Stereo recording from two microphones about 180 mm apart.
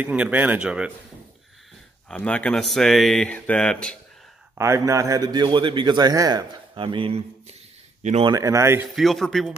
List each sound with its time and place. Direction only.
0.0 s speech: 10° right (ahead or behind)
2.0 s speech: 5° left (ahead or behind)
4.6 s a man's voice: 15° right (ahead or behind); by 8.3 s 40° right (ahead or behind)
8.3 s speech: 20° right (ahead or behind)
8.9 s speech: centre (ahead or behind)